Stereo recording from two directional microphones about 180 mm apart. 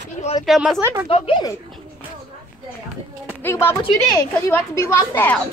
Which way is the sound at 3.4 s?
10° left (ahead or behind).